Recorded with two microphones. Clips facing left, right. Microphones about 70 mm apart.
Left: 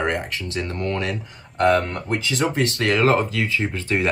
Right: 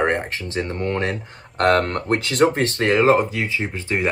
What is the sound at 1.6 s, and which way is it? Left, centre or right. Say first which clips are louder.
Speech: right 1 dB; right.